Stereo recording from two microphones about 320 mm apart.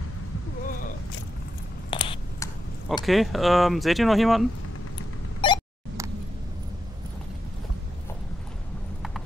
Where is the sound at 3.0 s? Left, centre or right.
Centre.